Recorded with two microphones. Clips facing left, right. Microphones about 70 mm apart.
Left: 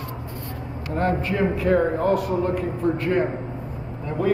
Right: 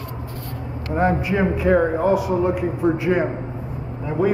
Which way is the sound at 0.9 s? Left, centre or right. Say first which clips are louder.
Right 3 dB; centre.